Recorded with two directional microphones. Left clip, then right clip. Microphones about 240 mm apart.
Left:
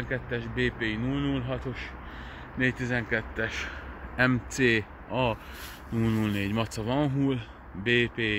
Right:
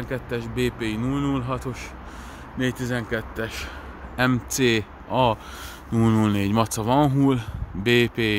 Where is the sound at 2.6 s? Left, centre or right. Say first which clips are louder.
Right 1 dB; centre.